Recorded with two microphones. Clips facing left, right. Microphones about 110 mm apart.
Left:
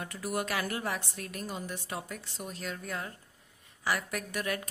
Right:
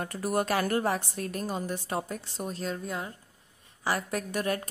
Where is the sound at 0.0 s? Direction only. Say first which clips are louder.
Right 5 dB; 40° right (ahead or behind).